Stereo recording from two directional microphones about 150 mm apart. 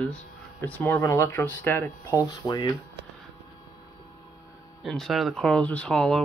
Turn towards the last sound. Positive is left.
turn(degrees=5)  # may be behind; listen again after turning